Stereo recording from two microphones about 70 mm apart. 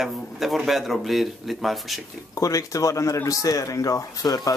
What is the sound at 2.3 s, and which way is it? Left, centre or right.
A man's voice, left.